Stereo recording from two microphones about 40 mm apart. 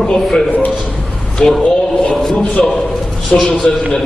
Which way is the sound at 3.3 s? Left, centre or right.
Centre.